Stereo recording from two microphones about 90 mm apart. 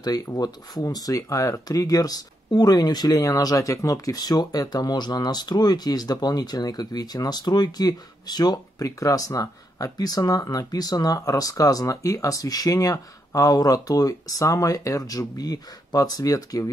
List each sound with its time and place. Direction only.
0.0 s speech: 45° left (ahead or behind)